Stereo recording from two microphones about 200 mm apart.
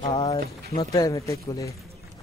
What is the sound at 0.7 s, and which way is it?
Speech, 15° left (ahead or behind).